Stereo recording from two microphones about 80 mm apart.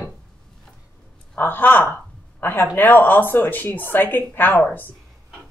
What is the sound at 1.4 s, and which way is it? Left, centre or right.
Speech, left.